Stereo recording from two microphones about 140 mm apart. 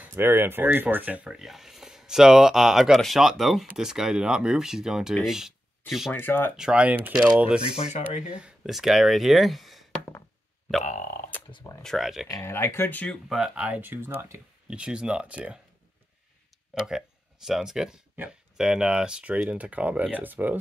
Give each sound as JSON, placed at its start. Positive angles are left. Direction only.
{"t": 0.0, "sound": "speech", "side_deg": -15}
{"t": 6.1, "sound": "speech", "side_deg": 15}
{"t": 6.5, "sound": "speech", "side_deg": -5}
{"t": 7.6, "sound": "speech", "side_deg": 50}
{"t": 8.3, "sound": "speech", "side_deg": -5}
{"t": 10.8, "sound": "speech", "side_deg": 60}
{"t": 11.8, "sound": "speech", "side_deg": 0}
{"t": 12.3, "sound": "speech", "side_deg": 20}
{"t": 16.7, "sound": "speech", "side_deg": -5}